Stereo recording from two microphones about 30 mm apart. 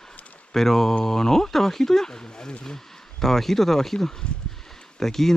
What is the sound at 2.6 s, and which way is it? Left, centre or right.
Speech, centre.